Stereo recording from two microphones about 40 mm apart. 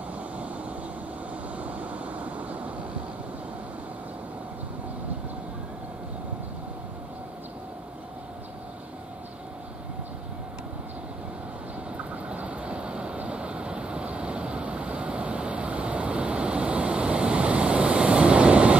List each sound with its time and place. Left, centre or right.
1.6 s vehicle: right
12.3 s vehicle: right